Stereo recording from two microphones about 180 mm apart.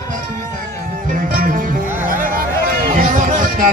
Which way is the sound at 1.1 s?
50° right (ahead or behind).